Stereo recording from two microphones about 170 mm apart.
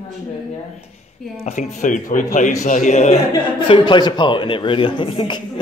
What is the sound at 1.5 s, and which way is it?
A man's voice, 45° left (ahead or behind).